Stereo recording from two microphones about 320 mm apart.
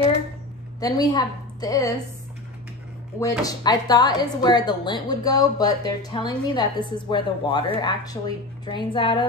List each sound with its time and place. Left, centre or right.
0.7 s a woman's voice: centre
3.2 s a woman's voice: centre